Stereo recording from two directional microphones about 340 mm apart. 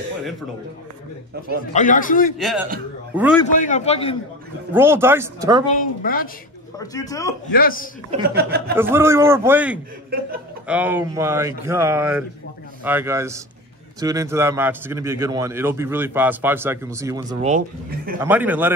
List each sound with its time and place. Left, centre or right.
1.7 s a man's voice: left
2.3 s a man's voice: centre
3.3 s a man's voice: left
4.7 s a man's voice: centre
5.8 s a man's voice: left
6.8 s speech: centre
7.5 s a man's voice: left
8.1 s speech: right
8.7 s a man's voice: centre
18.2 s a man's voice: centre